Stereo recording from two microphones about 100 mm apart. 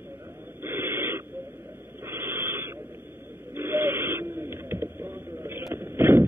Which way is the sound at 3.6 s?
25° right (ahead or behind).